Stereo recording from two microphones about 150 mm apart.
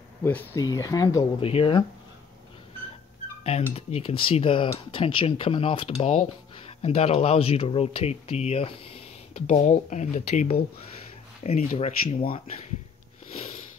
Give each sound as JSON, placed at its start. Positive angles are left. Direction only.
{"t": 0.2, "sound": "speech", "side_deg": 10}
{"t": 0.6, "sound": "speech", "side_deg": 25}
{"t": 1.4, "sound": "speech", "side_deg": 40}
{"t": 3.7, "sound": "speech", "side_deg": 40}
{"t": 13.3, "sound": "sniff", "side_deg": 40}